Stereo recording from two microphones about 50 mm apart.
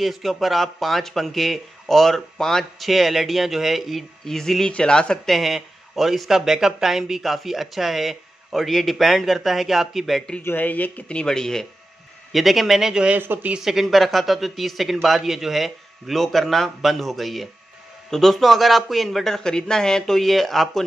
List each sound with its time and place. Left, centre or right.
0.0 s speech: centre
5.2 s speech: centre
10.4 s speech: left
11.1 s speech: centre
12.3 s speech: centre